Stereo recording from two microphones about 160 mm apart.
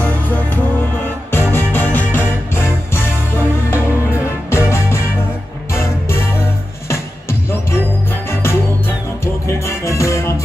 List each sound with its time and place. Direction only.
1.0 s music: 15° left (ahead or behind)